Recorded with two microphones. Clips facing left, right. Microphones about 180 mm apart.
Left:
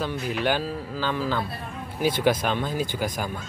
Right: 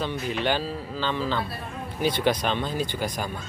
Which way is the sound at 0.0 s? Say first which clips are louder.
Left 1 dB; 5° left (ahead or behind).